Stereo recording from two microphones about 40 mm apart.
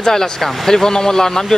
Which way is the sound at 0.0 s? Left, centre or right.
Centre.